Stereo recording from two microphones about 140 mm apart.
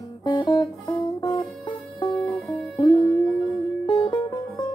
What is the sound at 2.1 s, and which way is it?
Music, 5° left (ahead or behind).